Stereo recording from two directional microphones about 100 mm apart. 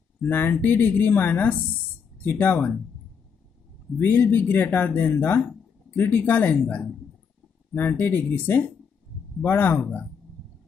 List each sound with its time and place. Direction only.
0.3 s speech: 20° left (ahead or behind)
4.0 s speech: 20° left (ahead or behind)